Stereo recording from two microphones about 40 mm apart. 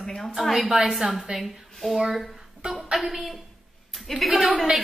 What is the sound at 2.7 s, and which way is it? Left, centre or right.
A woman's voice, centre.